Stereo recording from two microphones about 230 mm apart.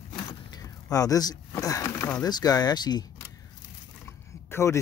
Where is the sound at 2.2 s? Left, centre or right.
Centre.